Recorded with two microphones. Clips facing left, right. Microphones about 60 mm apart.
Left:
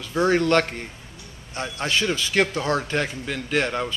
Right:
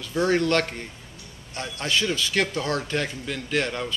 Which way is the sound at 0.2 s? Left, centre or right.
Centre.